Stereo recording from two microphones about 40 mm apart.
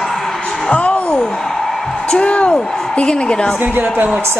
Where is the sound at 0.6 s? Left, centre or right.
Left.